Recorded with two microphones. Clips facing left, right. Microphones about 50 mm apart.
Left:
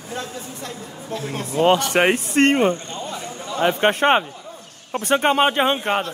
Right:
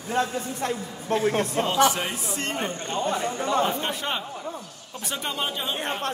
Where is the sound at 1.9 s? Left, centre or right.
Left.